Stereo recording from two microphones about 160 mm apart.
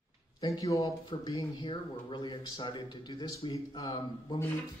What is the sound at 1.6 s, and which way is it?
Speech, 35° left (ahead or behind).